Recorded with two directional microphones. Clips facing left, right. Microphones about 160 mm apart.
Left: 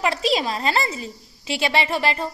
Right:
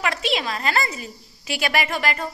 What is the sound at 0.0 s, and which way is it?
A woman's voice, 35° left (ahead or behind).